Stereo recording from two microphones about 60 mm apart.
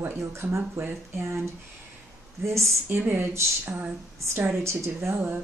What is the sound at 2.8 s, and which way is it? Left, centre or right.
Speech, right.